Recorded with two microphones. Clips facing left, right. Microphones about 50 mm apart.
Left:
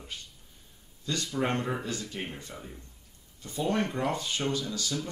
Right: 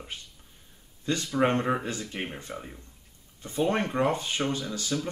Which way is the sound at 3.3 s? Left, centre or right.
Right.